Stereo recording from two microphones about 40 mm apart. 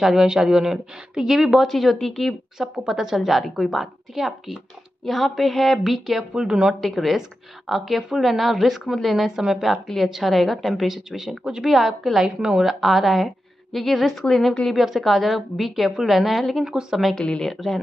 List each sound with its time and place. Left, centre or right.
0.0 s a woman's voice: centre
2.9 s a woman's voice: centre
3.2 s a woman's voice: centre
6.3 s speech: centre
6.8 s a woman's voice: centre
9.7 s a woman's voice: centre
12.4 s speech: centre
12.6 s a woman's voice: centre
16.7 s speech: right
17.4 s a woman's voice: centre